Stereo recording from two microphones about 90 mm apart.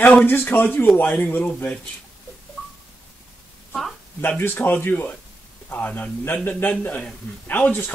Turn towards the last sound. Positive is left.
turn(degrees=20)  # may be behind; listen again after turning